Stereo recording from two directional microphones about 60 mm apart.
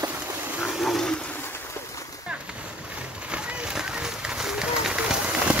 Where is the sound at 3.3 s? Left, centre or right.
Centre.